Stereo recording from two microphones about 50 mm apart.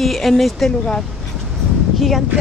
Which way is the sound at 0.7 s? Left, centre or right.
Centre.